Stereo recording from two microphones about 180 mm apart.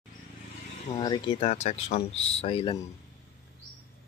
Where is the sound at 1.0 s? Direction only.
25° left (ahead or behind).